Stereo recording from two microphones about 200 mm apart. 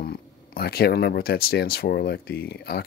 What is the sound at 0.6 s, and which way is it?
Speech, 50° left (ahead or behind).